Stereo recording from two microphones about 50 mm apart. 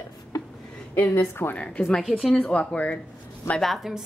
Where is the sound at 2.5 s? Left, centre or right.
Left.